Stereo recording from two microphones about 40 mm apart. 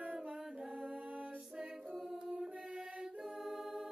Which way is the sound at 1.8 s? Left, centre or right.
Centre.